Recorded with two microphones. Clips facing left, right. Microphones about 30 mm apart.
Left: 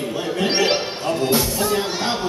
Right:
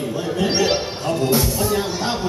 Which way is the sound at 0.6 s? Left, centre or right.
Left.